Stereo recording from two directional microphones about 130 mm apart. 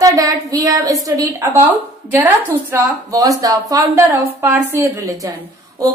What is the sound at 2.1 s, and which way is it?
Speech, 15° right (ahead or behind).